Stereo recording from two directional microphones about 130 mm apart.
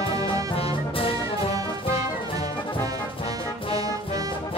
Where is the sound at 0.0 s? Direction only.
45° left (ahead or behind).